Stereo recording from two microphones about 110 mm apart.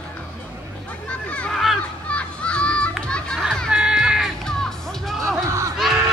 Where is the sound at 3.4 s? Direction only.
Centre (ahead or behind).